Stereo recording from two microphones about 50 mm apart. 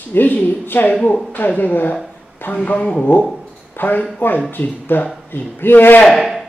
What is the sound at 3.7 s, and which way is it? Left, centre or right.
Speech, left.